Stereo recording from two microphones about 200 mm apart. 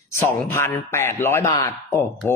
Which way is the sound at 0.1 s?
10° left (ahead or behind).